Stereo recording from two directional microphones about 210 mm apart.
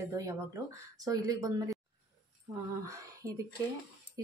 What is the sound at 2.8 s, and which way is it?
Speech, 15° right (ahead or behind).